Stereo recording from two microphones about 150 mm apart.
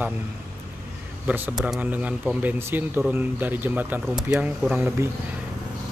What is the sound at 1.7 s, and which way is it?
Speech, 10° right (ahead or behind).